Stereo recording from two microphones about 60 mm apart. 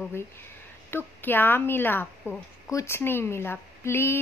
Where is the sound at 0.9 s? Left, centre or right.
Left.